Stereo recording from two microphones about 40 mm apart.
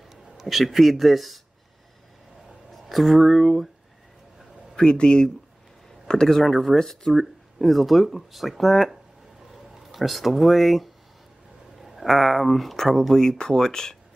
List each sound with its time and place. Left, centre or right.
0.1 s speech: centre
2.7 s speech: centre
4.7 s speech: left